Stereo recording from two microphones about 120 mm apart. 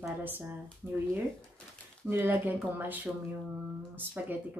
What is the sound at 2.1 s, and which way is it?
Speech, 15° right (ahead or behind).